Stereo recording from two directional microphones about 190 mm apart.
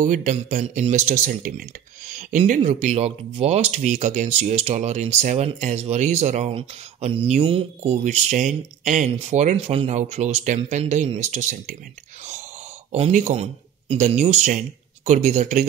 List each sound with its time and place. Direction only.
0.0 s speech: 40° right (ahead or behind)
12.9 s speech: 35° right (ahead or behind)